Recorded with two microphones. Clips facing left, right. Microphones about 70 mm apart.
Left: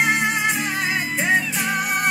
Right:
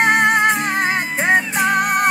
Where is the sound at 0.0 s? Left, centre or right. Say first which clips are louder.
Right 6 dB; right.